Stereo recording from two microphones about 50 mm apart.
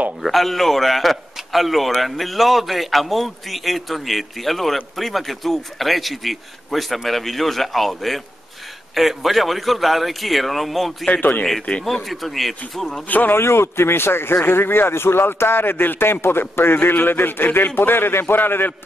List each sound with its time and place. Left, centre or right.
0.2 s a man's voice: centre
11.1 s speech: left
11.8 s a man's voice: centre
13.1 s speech: left
13.4 s speech: left